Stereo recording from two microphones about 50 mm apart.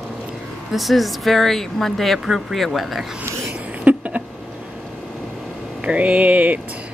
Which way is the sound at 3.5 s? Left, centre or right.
Right.